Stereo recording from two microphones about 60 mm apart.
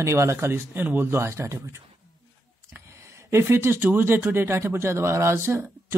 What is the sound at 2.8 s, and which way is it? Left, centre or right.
Speech, right.